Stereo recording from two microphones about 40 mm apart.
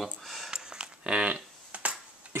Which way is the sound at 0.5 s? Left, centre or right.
Right.